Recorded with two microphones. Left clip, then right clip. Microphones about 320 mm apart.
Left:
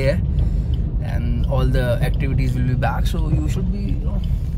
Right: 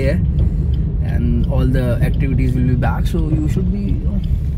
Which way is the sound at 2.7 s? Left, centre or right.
Left.